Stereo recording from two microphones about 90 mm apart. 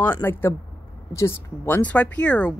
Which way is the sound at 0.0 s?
25° left (ahead or behind).